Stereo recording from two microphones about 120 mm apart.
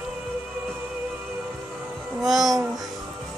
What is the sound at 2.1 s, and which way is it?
Music, centre (ahead or behind).